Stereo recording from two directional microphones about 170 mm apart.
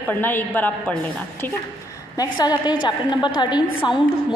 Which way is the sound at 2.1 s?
25° left (ahead or behind).